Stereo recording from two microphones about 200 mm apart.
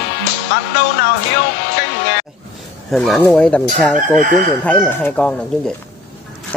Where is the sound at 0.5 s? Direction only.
60° left (ahead or behind).